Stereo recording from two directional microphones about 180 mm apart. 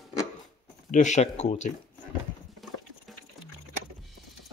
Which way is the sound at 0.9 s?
40° left (ahead or behind).